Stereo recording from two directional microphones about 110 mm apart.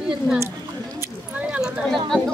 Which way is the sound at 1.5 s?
5° right (ahead or behind).